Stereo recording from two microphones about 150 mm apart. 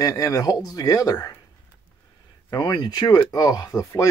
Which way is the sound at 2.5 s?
30° left (ahead or behind).